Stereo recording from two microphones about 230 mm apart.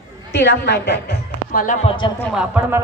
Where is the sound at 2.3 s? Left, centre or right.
Centre.